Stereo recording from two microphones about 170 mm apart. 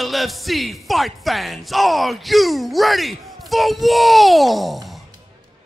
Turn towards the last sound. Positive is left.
turn(degrees=0)  # may be behind; listen again after turning